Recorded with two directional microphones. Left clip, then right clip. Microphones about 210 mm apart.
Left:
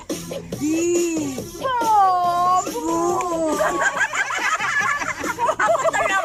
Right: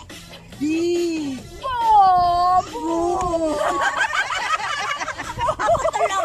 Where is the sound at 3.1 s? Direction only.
Centre (ahead or behind).